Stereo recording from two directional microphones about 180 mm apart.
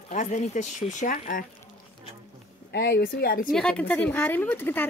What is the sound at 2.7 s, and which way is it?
Speech, 60° left (ahead or behind).